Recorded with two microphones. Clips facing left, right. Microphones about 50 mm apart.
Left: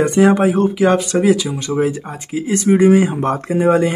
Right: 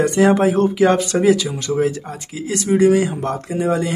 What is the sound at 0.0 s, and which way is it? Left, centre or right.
Speech, centre.